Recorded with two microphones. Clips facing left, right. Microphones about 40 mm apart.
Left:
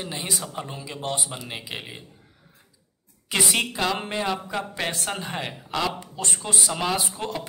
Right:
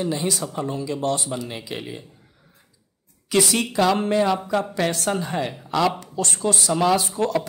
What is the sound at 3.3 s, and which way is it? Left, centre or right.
Speech, left.